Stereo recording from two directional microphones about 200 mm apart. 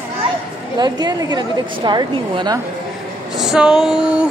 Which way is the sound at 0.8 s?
20° right (ahead or behind).